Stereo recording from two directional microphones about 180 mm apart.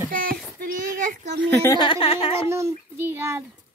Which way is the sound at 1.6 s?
25° left (ahead or behind).